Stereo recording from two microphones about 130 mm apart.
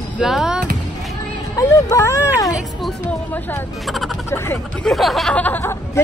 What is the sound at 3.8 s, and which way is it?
Speech, centre (ahead or behind).